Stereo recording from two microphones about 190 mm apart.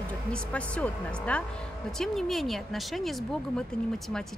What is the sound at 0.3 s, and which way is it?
Speech, 5° left (ahead or behind).